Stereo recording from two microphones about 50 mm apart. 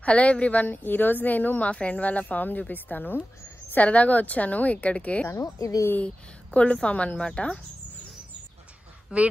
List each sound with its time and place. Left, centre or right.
0.0 s speech: left
5.3 s speech: left
5.9 s speech: left
9.1 s speech: right